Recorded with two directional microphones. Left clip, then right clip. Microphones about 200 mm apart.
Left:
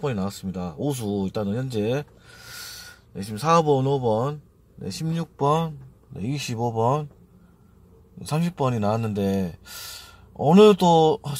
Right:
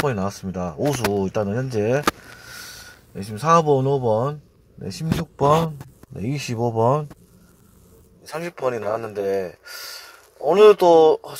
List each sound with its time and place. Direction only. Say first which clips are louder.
0.0 s speech: right 5 dB; 5° right (ahead or behind)
3.2 s speech: right 3 dB; 15° right (ahead or behind)
6.1 s speech: right 3 dB; 5° right (ahead or behind)
8.3 s speech: right 1 dB; 5° right (ahead or behind)